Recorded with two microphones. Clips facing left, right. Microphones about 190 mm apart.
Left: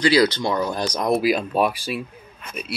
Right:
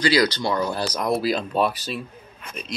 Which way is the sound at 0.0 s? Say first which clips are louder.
Left 2 dB; 20° left (ahead or behind).